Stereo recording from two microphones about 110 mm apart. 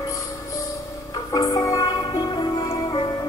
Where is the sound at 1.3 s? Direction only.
35° left (ahead or behind).